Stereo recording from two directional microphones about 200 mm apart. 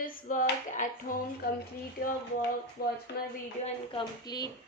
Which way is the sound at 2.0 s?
50° left (ahead or behind).